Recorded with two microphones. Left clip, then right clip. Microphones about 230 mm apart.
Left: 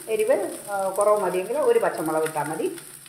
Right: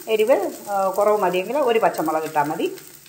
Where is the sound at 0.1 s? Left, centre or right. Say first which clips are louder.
Right 4 dB; right.